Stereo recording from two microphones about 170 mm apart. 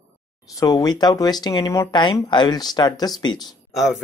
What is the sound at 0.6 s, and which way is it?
Speech, 20° left (ahead or behind).